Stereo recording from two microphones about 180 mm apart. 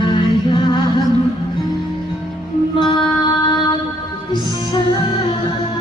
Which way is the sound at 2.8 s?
25° left (ahead or behind).